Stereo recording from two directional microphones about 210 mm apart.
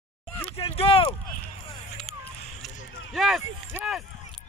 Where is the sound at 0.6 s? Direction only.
25° left (ahead or behind).